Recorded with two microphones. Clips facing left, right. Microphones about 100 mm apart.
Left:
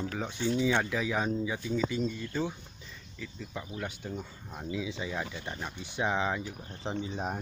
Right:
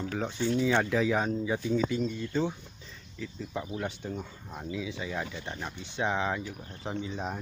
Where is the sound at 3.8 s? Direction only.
10° left (ahead or behind).